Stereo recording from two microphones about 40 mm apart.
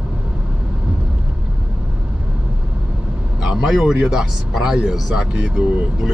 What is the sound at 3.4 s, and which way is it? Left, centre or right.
Speech, centre.